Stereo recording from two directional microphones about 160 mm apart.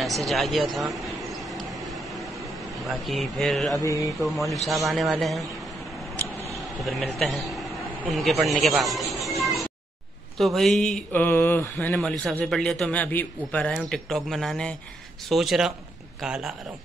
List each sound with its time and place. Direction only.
0.0 s a sound: centre (ahead or behind)
2.8 s a man's voice: centre (ahead or behind)
3.8 s speech: 20° left (ahead or behind)
4.2 s a man's voice: centre (ahead or behind)
6.8 s a man's voice: centre (ahead or behind)
9.4 s cat: centre (ahead or behind)
10.3 s a man's voice: centre (ahead or behind)